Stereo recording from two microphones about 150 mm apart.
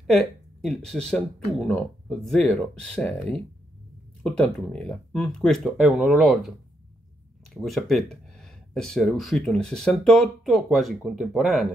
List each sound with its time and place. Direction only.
0.0 s speech: 5° left (ahead or behind)
7.5 s speech: centre (ahead or behind)